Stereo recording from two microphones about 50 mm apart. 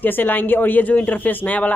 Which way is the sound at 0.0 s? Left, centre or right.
Left.